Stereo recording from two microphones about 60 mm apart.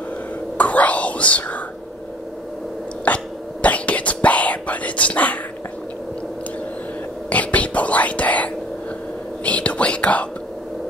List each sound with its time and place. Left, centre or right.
0.6 s whispering: left
3.1 s cough: left
3.6 s whispering: left
7.2 s whispering: left